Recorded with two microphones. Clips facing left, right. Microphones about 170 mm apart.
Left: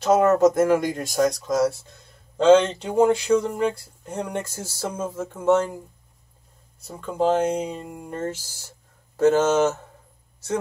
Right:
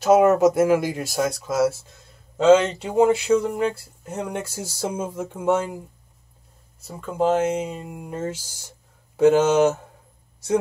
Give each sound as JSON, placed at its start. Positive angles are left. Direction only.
{"t": 0.0, "sound": "speech", "side_deg": -10}
{"t": 6.8, "sound": "speech", "side_deg": 0}